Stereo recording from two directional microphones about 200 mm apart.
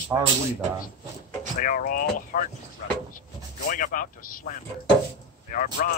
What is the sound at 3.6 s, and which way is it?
Speech, 40° left (ahead or behind).